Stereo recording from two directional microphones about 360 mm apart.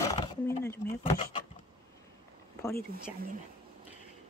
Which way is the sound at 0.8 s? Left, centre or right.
Centre.